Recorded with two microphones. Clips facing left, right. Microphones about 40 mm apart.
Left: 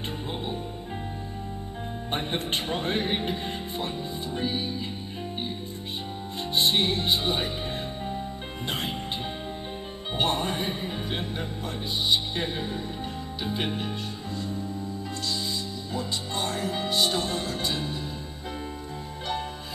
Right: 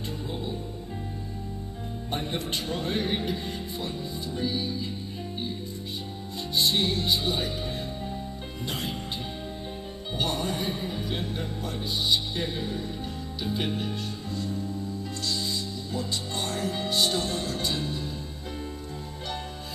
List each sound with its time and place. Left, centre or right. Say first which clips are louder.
2.0 s speech: left 2 dB; left
6.5 s music: left 1 dB; left
8.6 s speech: left 2 dB; left
10.1 s speech: left 3 dB; left; by 14.6 s centre
15.9 s speech: left 1 dB; centre